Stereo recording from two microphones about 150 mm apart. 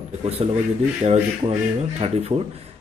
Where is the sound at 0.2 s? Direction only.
40° right (ahead or behind).